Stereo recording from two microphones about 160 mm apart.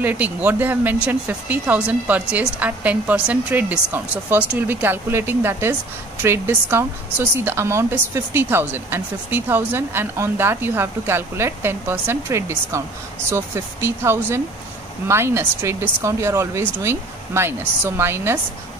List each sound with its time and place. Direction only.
0.0 s speech: 10° right (ahead or behind)